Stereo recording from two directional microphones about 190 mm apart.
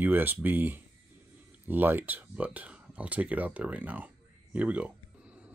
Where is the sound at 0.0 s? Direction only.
10° right (ahead or behind).